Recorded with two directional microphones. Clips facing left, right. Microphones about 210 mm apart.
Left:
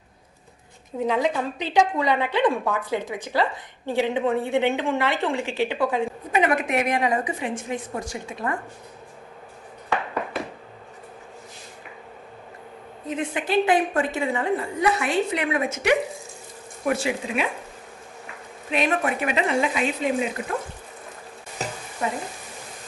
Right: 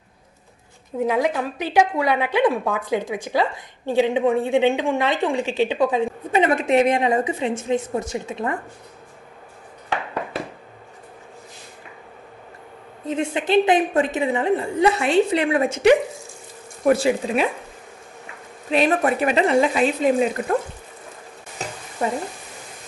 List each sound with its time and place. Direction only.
1.0 s a woman's voice: 10° right (ahead or behind)
13.1 s a woman's voice: 25° right (ahead or behind)
18.7 s speech: 35° right (ahead or behind)
22.0 s speech: 45° right (ahead or behind)